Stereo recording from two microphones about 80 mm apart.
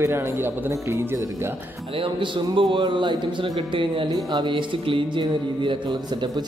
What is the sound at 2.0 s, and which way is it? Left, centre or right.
A man's voice, right.